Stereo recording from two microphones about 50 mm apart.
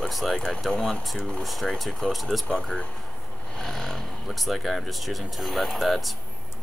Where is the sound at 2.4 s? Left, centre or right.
Centre.